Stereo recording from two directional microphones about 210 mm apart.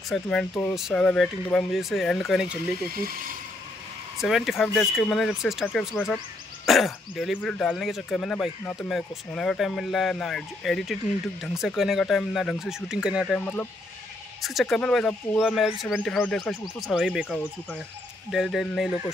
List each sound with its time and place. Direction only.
0.1 s speech: 5° left (ahead or behind)
2.9 s speech: 45° right (ahead or behind)
4.2 s speech: centre (ahead or behind)